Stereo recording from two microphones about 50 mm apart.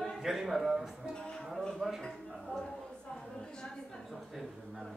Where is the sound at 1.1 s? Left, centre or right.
Centre.